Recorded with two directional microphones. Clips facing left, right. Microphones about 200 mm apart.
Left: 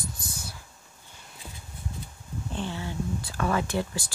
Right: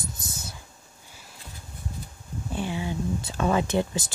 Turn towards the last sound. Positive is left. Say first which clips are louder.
# right 4 dB
turn(degrees=-20)  # may be behind; listen again after turning